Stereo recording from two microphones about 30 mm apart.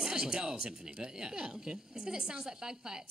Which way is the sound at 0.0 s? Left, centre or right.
Right.